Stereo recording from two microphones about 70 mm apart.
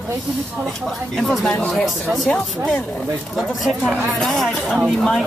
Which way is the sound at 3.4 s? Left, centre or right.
Centre.